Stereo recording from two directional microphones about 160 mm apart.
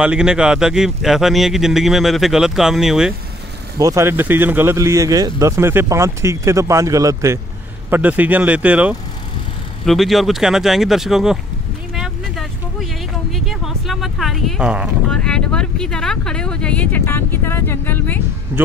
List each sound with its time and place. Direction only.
0.0 s a man's voice: 5° right (ahead or behind)
3.7 s speech: 20° right (ahead or behind)
7.9 s a man's voice: 10° right (ahead or behind)
11.9 s vehicle: centre (ahead or behind)
13.3 s a sound: centre (ahead or behind)
15.0 s speech: 5° left (ahead or behind)